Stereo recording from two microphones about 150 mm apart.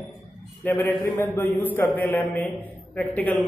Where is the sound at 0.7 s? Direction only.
15° left (ahead or behind).